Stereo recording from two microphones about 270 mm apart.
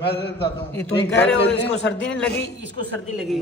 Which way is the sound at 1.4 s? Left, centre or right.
Left.